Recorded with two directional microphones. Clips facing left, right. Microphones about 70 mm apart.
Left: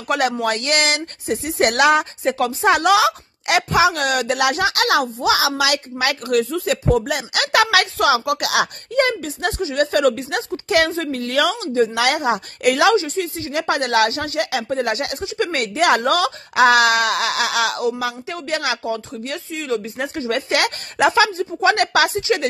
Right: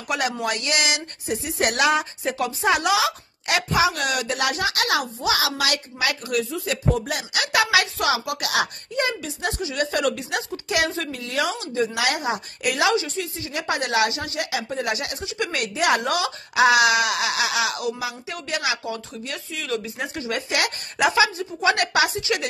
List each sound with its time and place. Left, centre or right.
0.1 s speech: left
3.0 s speech: left
7.6 s speech: left
8.1 s speech: left
8.9 s speech: left
11.1 s a woman's voice: left
11.6 s a woman's voice: left
12.9 s a woman's voice: left
13.2 s speech: left
15.2 s speech: left
20.0 s speech: left